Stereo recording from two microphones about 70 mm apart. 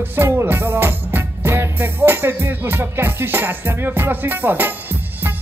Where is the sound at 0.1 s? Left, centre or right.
Right.